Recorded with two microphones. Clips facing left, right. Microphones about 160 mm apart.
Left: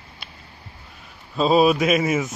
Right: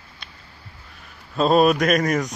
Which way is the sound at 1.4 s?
Centre (ahead or behind).